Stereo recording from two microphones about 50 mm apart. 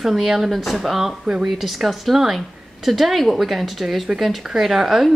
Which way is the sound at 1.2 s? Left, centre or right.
Centre.